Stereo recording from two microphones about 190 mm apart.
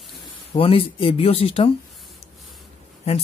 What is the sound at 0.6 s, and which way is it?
Speech, 30° left (ahead or behind).